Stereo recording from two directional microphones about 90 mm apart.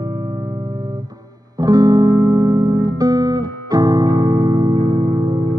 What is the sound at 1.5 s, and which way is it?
Music, 45° right (ahead or behind).